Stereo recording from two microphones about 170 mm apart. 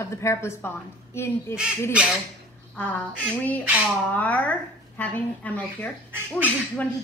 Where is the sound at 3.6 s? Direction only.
10° right (ahead or behind).